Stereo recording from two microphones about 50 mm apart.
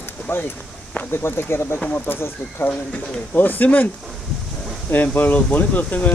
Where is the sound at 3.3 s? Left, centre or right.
Left.